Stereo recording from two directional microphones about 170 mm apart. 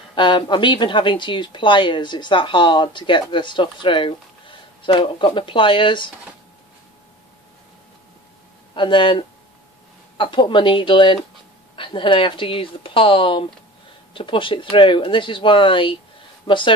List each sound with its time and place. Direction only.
0.1 s speech: 30° left (ahead or behind)
8.7 s speech: 30° left (ahead or behind)